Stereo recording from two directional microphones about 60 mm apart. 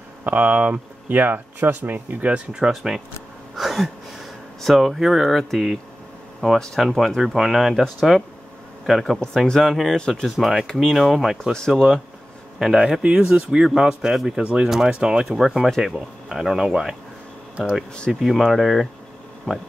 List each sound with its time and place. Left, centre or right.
0.2 s speech: right
2.7 s speech: centre
3.5 s a sound: centre
4.6 s speech: centre
9.9 s speech: centre
10.2 s speech: centre
10.7 s speech: centre
11.0 s speech: centre
11.5 s speech: centre
12.5 s speech: centre
18.2 s speech: centre